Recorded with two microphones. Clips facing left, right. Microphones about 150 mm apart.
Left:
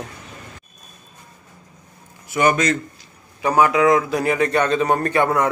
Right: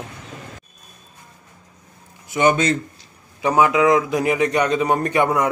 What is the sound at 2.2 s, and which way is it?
A man's voice, 20° right (ahead or behind).